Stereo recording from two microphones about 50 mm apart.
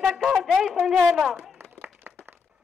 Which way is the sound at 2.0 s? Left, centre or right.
Right.